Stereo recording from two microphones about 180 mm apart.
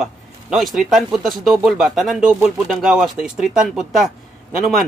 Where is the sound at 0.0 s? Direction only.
Centre (ahead or behind).